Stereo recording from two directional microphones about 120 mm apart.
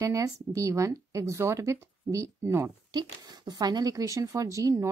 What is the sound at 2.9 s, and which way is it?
Speech, 35° right (ahead or behind).